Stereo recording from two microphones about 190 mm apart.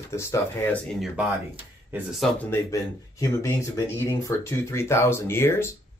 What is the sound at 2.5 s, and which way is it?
Speech, 15° left (ahead or behind).